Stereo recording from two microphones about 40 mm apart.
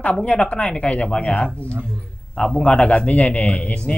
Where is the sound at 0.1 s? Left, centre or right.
Left.